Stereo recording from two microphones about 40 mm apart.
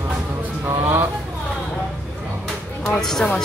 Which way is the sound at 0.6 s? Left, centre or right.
Right.